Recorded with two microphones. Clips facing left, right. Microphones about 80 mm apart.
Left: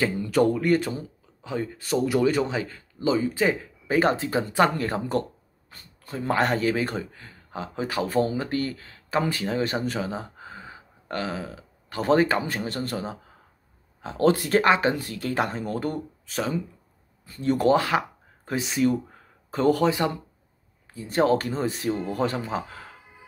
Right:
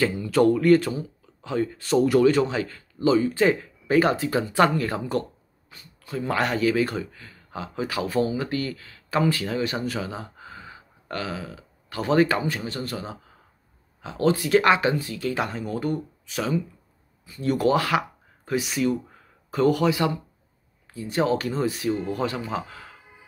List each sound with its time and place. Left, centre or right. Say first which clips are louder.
0.0 s speech: right 2 dB; centre
4.0 s speech: left 3 dB; left
9.8 s a sound: left 1 dB; left
12.4 s speech: even; left
14.0 s speech: left 1 dB; left
14.6 s speech: right 1 dB; left
15.0 s speech: even; left
21.1 s speech: left 2 dB; left
21.5 s speech: right 2 dB; left